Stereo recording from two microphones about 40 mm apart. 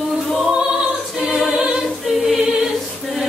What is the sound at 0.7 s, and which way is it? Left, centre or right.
Music, right.